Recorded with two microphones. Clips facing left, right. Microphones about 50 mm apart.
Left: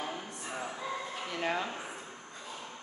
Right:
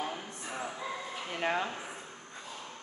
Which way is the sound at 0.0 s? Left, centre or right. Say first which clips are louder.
Right 1 dB; centre.